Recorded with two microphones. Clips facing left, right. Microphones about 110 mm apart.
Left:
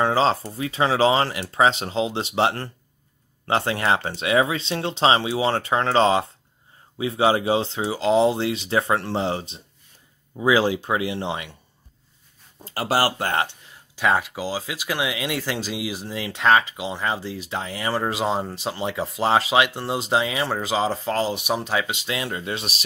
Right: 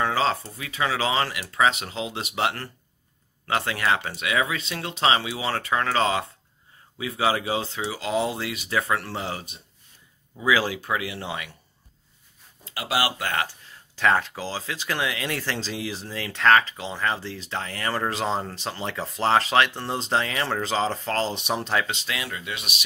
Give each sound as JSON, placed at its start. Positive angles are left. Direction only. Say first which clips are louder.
{"t": 0.0, "sound": "speech", "louder": "left 4 dB", "side_deg": 30}
{"t": 12.6, "sound": "speech", "louder": "left 4 dB", "side_deg": 40}
{"t": 13.9, "sound": "speech", "louder": "left 1 dB", "side_deg": 10}